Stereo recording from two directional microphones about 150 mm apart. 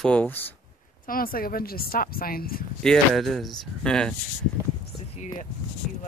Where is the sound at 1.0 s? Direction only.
75° left (ahead or behind).